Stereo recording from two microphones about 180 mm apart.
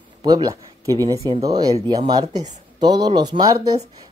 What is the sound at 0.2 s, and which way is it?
Speech, 20° right (ahead or behind).